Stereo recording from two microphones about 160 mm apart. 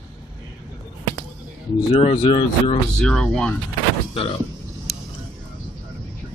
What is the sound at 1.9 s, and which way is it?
Speech, 35° left (ahead or behind).